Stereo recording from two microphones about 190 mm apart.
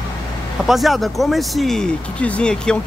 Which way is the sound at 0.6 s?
Centre (ahead or behind).